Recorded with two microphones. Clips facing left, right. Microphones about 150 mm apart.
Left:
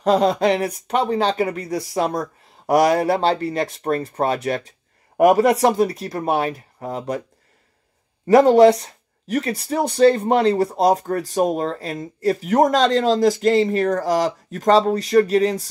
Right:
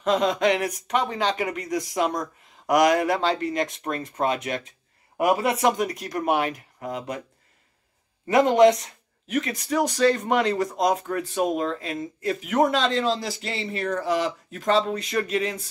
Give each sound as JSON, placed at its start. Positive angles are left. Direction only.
{"t": 0.0, "sound": "speech", "side_deg": 35}
{"t": 8.3, "sound": "speech", "side_deg": 35}